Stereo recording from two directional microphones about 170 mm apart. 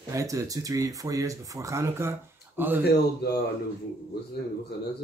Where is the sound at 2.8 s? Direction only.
70° left (ahead or behind).